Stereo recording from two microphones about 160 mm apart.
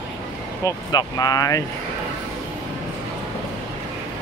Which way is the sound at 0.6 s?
25° left (ahead or behind).